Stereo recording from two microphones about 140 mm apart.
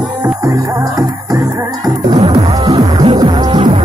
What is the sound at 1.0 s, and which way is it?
Music, 25° right (ahead or behind).